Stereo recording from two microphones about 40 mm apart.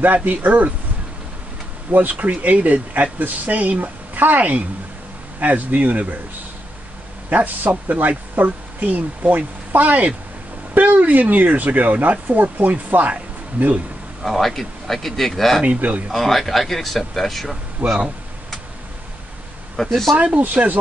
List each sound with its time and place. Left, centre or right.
0.0 s a woman's voice: right
1.9 s a woman's voice: right
7.2 s a woman's voice: right
14.2 s speech: centre
17.8 s a woman's voice: right
19.8 s speech: centre
20.3 s a woman's voice: right